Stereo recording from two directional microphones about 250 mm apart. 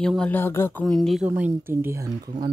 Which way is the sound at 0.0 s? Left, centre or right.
Centre.